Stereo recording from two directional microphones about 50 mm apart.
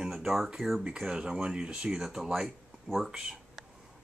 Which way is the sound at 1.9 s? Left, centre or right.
Centre.